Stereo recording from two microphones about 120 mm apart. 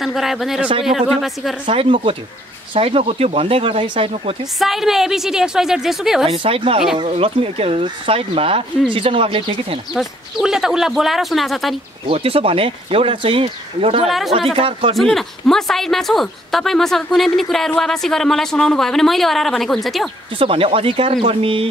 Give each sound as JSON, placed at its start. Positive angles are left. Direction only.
{"t": 0.0, "sound": "a woman's voice", "side_deg": 0}
{"t": 1.7, "sound": "speech", "side_deg": -45}
{"t": 4.6, "sound": "a woman's voice", "side_deg": 0}
{"t": 6.3, "sound": "speech", "side_deg": -50}
{"t": 9.9, "sound": "a woman's voice", "side_deg": -5}
{"t": 12.1, "sound": "speech", "side_deg": -55}
{"t": 14.0, "sound": "a woman's voice", "side_deg": 0}
{"t": 14.5, "sound": "speech", "side_deg": -50}
{"t": 15.0, "sound": "a woman's voice", "side_deg": 0}
{"t": 20.3, "sound": "speech", "side_deg": -50}